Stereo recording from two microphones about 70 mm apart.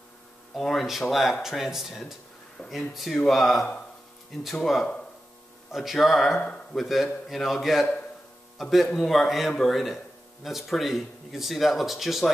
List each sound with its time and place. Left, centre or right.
0.6 s speech: centre
5.7 s speech: centre